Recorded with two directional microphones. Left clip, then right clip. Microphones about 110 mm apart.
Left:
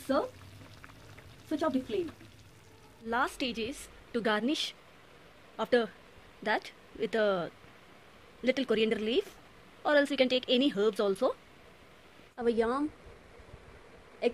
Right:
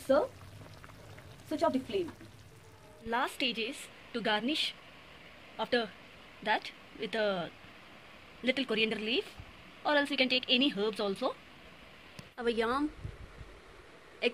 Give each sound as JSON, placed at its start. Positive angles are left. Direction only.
{"t": 0.1, "sound": "speech", "side_deg": -20}
{"t": 1.6, "sound": "speech", "side_deg": -25}
{"t": 3.1, "sound": "a woman's voice", "side_deg": 40}
{"t": 5.6, "sound": "speech", "side_deg": 70}
{"t": 8.6, "sound": "a woman's voice", "side_deg": 65}
{"t": 9.8, "sound": "a woman's voice", "side_deg": 90}
{"t": 12.4, "sound": "speech", "side_deg": 30}
{"t": 14.2, "sound": "a sound", "side_deg": 35}